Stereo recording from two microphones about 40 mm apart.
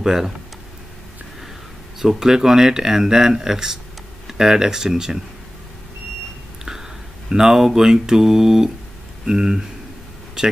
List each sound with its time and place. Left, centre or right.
0.0 s speech: centre
2.0 s speech: centre
6.6 s speech: centre